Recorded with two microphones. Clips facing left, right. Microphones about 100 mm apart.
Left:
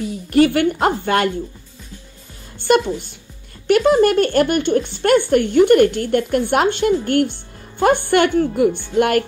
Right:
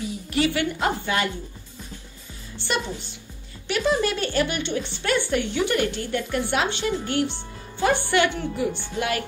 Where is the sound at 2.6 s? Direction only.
50° left (ahead or behind).